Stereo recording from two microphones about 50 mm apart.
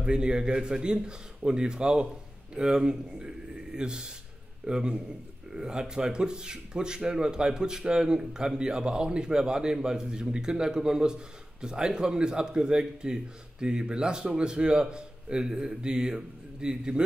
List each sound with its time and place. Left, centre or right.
0.0 s speech: centre